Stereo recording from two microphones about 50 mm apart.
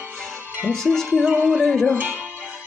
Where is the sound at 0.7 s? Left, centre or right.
Centre.